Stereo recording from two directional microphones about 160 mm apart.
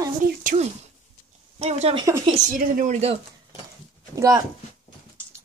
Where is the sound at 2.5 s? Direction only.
55° right (ahead or behind).